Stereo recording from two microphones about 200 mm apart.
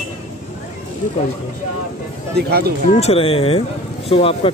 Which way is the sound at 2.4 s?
50° right (ahead or behind).